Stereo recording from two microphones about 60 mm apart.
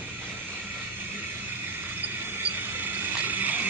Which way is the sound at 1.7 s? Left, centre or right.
Right.